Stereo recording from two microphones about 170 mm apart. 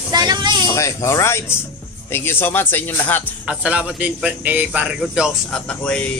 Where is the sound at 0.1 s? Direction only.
25° right (ahead or behind).